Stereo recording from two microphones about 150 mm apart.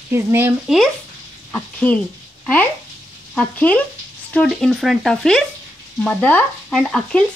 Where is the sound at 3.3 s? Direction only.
10° left (ahead or behind).